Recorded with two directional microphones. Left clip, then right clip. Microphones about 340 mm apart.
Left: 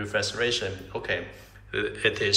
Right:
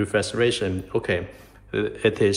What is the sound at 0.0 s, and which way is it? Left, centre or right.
A man's voice, centre.